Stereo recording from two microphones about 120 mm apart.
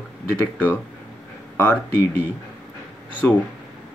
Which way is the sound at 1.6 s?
20° left (ahead or behind).